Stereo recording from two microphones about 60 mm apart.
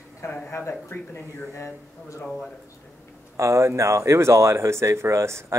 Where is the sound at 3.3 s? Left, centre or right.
Right.